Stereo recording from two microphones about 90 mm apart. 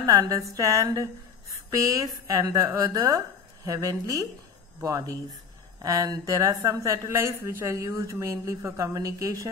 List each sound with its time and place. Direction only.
0.0 s a woman's voice: 40° right (ahead or behind)